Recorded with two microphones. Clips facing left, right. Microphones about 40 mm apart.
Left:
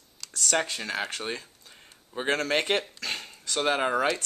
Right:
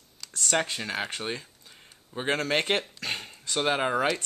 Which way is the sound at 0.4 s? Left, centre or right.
Centre.